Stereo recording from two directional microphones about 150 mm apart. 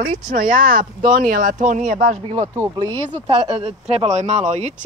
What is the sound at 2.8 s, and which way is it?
Speech, 30° right (ahead or behind).